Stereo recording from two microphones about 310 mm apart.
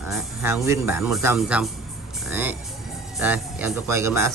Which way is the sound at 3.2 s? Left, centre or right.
Centre.